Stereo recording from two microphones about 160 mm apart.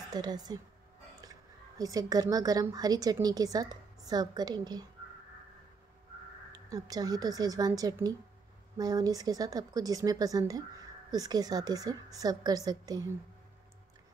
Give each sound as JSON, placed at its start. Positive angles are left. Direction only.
{"t": 0.1, "sound": "a woman's voice", "side_deg": -25}
{"t": 1.8, "sound": "a woman's voice", "side_deg": -20}
{"t": 6.5, "sound": "a woman's voice", "side_deg": -25}